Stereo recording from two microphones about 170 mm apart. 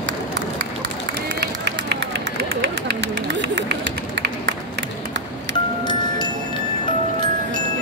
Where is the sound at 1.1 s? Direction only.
80° right.